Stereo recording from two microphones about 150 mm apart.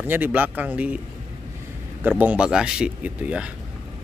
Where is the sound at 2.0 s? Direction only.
10° right (ahead or behind).